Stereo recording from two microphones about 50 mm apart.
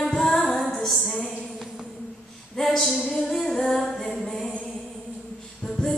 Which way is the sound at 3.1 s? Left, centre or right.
Centre.